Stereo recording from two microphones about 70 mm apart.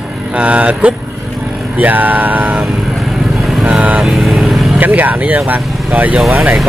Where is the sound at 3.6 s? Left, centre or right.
Right.